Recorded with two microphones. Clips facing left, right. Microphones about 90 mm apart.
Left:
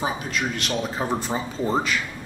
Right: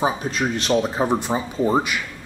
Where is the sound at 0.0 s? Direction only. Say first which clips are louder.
Right 4 dB; 30° right (ahead or behind).